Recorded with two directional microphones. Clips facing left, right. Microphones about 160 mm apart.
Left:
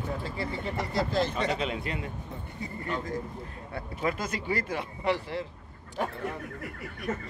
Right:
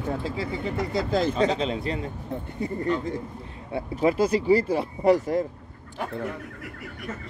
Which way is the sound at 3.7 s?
30° right (ahead or behind).